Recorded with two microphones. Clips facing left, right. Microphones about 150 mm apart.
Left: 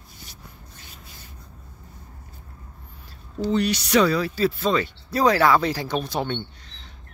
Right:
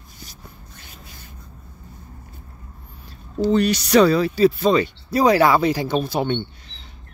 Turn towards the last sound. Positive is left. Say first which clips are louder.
# right 5 dB
turn(degrees=-10)  # may be behind; listen again after turning